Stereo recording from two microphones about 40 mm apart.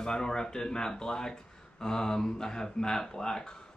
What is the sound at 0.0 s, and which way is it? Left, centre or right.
Speech, centre.